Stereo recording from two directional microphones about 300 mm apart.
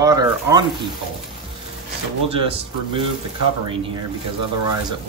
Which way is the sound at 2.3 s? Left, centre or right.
Centre.